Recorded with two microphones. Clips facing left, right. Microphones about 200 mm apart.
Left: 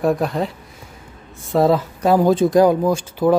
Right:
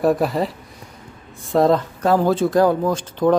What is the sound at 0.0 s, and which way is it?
Speech, centre (ahead or behind).